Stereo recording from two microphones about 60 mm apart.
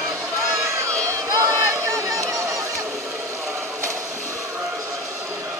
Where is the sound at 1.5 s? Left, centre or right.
Right.